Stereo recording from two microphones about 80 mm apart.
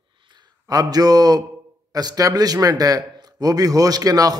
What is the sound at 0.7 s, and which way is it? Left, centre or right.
A man's voice, right.